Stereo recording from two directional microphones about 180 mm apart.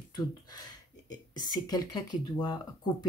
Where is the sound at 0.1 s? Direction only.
20° left (ahead or behind).